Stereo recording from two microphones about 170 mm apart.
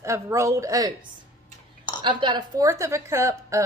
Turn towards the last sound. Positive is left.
turn(degrees=-15)  # may be behind; listen again after turning